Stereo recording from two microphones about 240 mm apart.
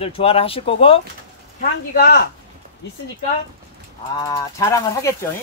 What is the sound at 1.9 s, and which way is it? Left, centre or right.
Speech, left.